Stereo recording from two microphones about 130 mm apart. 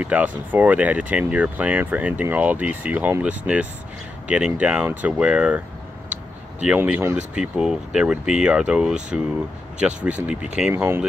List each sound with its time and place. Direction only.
0.0 s speech: 10° right (ahead or behind)
6.6 s speech: 10° right (ahead or behind)
7.3 s speech: 5° right (ahead or behind)